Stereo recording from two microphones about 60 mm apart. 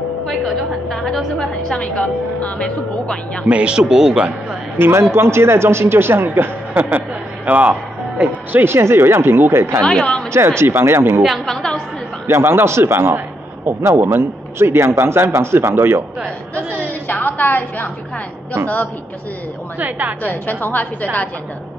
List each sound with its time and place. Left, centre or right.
0.8 s a woman's voice: centre
3.4 s a man's voice: centre
4.7 s speech: right
8.7 s a man's voice: right
9.8 s a woman's voice: centre
10.6 s a man's voice: right
11.2 s a woman's voice: centre
12.3 s a man's voice: right
16.7 s a woman's voice: left
19.8 s speech: right
20.2 s a woman's voice: left